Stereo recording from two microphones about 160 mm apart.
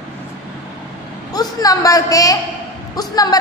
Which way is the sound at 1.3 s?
25° left (ahead or behind).